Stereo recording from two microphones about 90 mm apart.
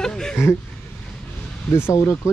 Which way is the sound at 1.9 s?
35° left (ahead or behind).